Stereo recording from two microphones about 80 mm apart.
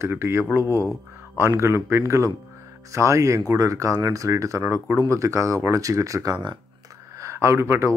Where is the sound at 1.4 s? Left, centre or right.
Right.